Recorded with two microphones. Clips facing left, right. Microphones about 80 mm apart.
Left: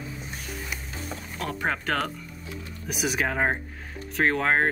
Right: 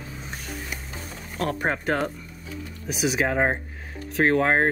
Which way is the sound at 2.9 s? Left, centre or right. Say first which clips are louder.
Right 3 dB; centre.